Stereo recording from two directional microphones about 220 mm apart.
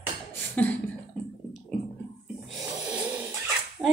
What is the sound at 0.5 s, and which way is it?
Cough, 5° left (ahead or behind).